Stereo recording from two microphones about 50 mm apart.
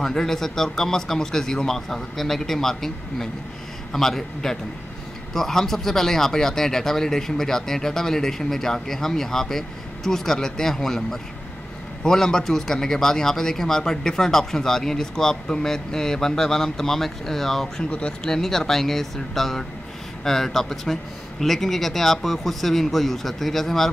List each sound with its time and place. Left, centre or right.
0.0 s speech: centre
17.9 s speech: left
18.3 s speech: centre